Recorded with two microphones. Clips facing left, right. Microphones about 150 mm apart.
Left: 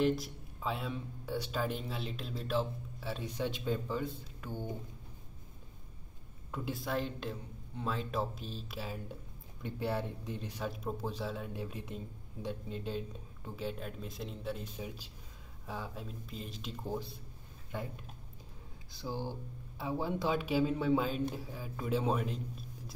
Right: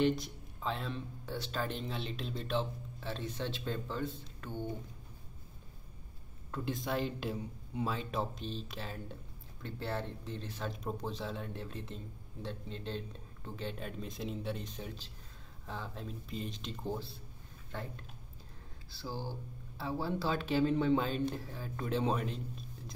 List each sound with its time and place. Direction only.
0.0 s speech: 5° left (ahead or behind)
6.5 s speech: 5° left (ahead or behind)